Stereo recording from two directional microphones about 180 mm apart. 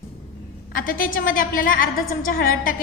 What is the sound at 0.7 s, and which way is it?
A woman's voice, 50° left (ahead or behind).